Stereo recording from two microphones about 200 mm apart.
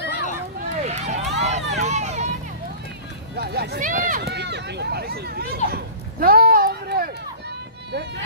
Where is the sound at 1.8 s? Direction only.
35° right (ahead or behind).